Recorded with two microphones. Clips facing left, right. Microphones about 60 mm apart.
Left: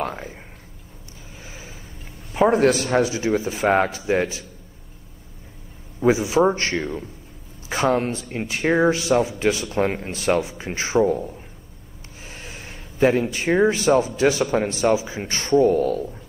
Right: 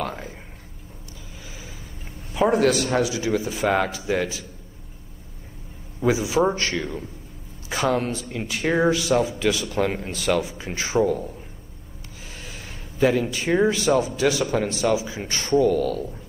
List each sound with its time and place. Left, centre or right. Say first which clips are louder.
0.1 s a man's voice: left 1 dB; left
2.5 s a man's voice: left 2 dB; left
6.0 s a man's voice: left 3 dB; left
12.3 s vehicle: left 2 dB; left
13.7 s a man's voice: left 2 dB; left